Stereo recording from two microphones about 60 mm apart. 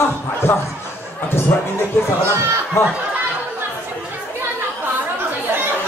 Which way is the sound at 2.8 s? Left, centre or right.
Left.